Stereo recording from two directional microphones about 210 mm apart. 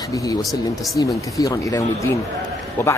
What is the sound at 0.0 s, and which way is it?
Speech, 15° left (ahead or behind).